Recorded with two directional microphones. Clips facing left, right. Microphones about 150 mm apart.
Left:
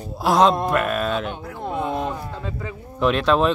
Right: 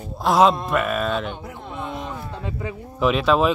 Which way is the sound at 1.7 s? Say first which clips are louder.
Left 7 dB; 45° left (ahead or behind).